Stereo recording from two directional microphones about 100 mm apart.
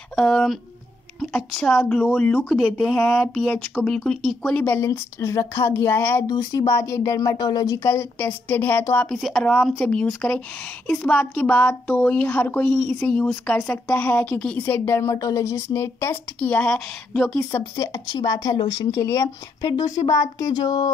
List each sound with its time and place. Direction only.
0.1 s a woman's voice: 5° left (ahead or behind)
4.6 s a woman's voice: 20° left (ahead or behind)
6.2 s a woman's voice: 40° left (ahead or behind); by 17.4 s 5° left (ahead or behind)
17.4 s a woman's voice: 25° left (ahead or behind); by 20.9 s 45° left (ahead or behind)